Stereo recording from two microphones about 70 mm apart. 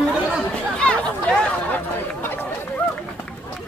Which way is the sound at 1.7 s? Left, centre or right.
Left.